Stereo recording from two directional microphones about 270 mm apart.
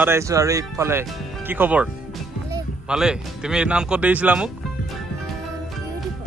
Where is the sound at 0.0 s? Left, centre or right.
Centre.